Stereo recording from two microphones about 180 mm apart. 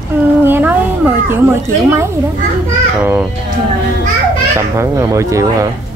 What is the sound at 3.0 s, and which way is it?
Speech, 10° right (ahead or behind).